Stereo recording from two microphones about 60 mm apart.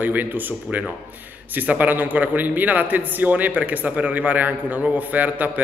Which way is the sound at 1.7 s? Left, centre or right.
Right.